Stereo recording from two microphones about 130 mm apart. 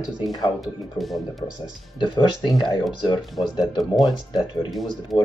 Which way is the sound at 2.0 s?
35° left (ahead or behind).